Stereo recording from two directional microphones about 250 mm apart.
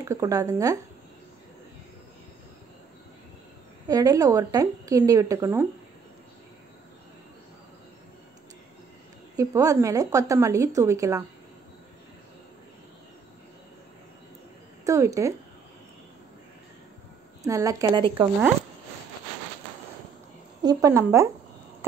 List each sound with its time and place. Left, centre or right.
0.0 s a woman's voice: centre
3.8 s a woman's voice: centre
9.4 s a woman's voice: centre
14.9 s a woman's voice: centre
17.4 s a woman's voice: centre
20.6 s a woman's voice: centre